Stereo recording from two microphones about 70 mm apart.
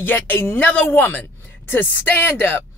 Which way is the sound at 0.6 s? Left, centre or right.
Centre.